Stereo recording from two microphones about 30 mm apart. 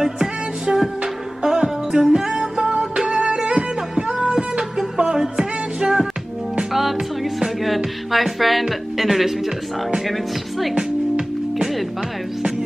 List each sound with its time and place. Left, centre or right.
0.0 s music: centre
7.6 s music: centre
10.7 s music: right